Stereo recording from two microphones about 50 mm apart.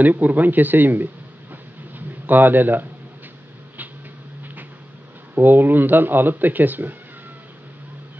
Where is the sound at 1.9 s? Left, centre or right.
Right.